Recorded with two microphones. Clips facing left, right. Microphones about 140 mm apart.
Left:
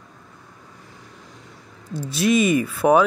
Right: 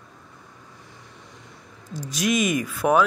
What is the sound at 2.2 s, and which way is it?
Speech, 5° right (ahead or behind).